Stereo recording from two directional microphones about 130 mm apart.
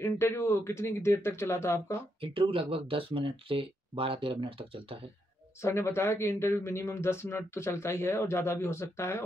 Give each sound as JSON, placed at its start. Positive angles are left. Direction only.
{"t": 0.0, "sound": "speech", "side_deg": 20}
{"t": 2.3, "sound": "speech", "side_deg": -45}
{"t": 5.6, "sound": "speech", "side_deg": 20}